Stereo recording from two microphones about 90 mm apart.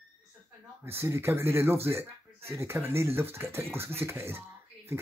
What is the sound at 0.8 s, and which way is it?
Speech, 30° right (ahead or behind).